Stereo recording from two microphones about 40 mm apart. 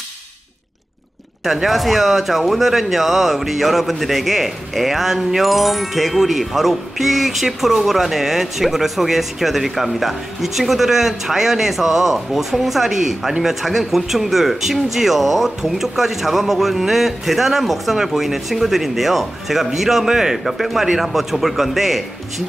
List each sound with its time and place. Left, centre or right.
1.4 s speech: centre